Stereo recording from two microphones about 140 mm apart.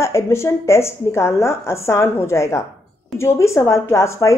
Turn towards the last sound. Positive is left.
turn(degrees=20)  # may be behind; listen again after turning